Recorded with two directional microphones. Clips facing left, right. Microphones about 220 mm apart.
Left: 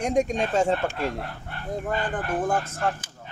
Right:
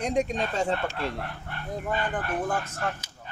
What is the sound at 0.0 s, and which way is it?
Speech, 45° left (ahead or behind).